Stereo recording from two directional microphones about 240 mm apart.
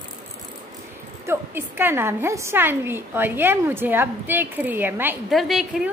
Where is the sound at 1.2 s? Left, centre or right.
Centre.